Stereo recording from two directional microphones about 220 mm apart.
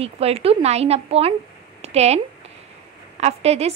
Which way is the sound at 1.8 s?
30° right (ahead or behind).